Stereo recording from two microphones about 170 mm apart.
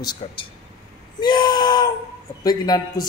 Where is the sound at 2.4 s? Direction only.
20° left (ahead or behind).